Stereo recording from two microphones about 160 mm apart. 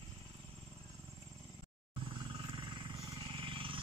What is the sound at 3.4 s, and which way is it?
Vehicle, 35° right (ahead or behind).